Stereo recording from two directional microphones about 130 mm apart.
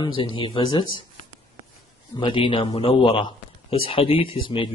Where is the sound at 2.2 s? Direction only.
40° left (ahead or behind).